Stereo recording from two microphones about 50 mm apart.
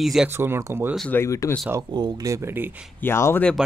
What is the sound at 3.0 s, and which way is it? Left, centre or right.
Speech, left.